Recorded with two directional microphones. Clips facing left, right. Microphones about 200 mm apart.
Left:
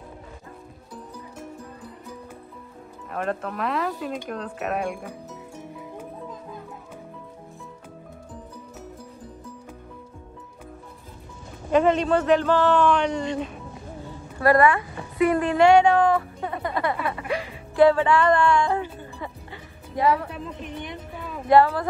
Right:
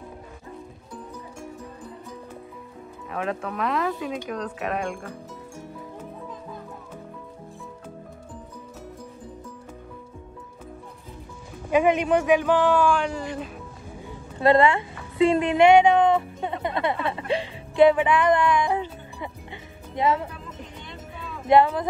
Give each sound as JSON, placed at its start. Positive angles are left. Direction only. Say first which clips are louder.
{"t": 3.1, "sound": "speech", "louder": "left 1 dB", "side_deg": 0}
{"t": 11.7, "sound": "a man's voice", "louder": "even", "side_deg": -15}
{"t": 14.4, "sound": "speech", "louder": "even", "side_deg": -25}
{"t": 15.1, "sound": "music", "louder": "right 1 dB", "side_deg": -25}
{"t": 20.2, "sound": "music", "louder": "left 5 dB", "side_deg": 20}
{"t": 21.5, "sound": "speech", "louder": "left 1 dB", "side_deg": -20}